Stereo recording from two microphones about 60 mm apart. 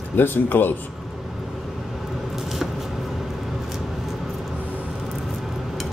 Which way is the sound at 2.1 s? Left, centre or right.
Centre.